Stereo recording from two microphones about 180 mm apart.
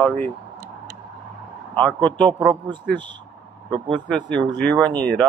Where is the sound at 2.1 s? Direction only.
25° right (ahead or behind).